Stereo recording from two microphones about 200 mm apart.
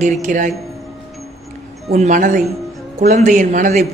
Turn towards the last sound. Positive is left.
turn(degrees=-40)  # may be behind; listen again after turning